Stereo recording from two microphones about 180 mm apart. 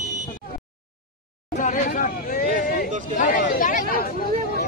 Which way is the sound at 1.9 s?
50° left (ahead or behind).